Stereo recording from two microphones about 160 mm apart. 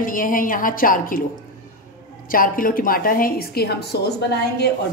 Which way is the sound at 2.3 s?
60° left (ahead or behind).